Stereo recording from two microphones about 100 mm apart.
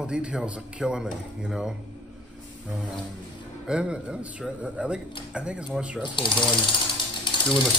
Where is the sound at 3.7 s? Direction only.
10° right (ahead or behind).